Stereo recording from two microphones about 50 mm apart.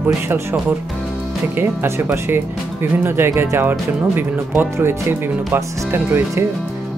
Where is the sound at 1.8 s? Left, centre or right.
Right.